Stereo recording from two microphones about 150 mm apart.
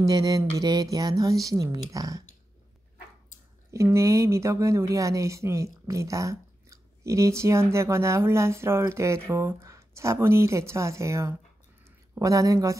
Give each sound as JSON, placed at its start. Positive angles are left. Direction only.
{"t": 0.0, "sound": "speech", "side_deg": -25}
{"t": 3.7, "sound": "speech", "side_deg": -20}